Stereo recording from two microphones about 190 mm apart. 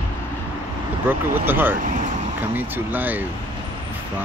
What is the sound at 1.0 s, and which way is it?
Speech, 10° right (ahead or behind).